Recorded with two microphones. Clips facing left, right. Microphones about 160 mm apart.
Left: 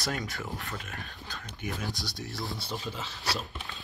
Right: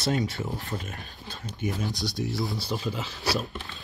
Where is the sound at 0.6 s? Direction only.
40° right (ahead or behind).